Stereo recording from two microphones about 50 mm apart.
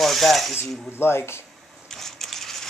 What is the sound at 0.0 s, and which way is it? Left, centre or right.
Speech, centre.